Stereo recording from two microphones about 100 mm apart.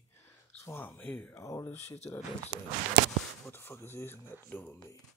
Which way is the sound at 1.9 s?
90° left.